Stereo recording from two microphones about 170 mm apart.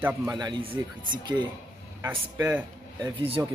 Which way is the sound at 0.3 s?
25° right (ahead or behind).